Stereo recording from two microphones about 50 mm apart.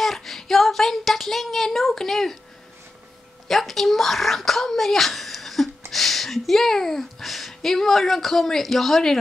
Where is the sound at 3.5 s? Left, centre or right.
Centre.